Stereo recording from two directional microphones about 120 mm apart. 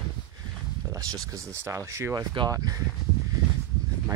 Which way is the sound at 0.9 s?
30° right (ahead or behind).